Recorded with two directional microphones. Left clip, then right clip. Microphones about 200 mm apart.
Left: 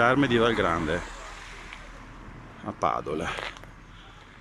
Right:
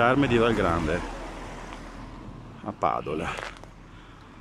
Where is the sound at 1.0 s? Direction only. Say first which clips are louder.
Right 2 dB; 40° right (ahead or behind).